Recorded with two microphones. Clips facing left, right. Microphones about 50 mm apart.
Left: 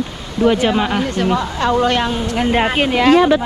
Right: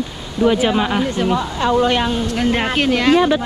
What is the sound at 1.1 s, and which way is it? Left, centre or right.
Speech, left.